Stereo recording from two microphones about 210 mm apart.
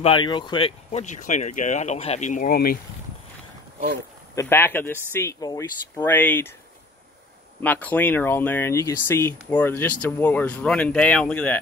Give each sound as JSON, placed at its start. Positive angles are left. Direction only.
{"t": 0.0, "sound": "speech", "side_deg": 25}
{"t": 4.4, "sound": "speech", "side_deg": 10}
{"t": 7.6, "sound": "speech", "side_deg": 10}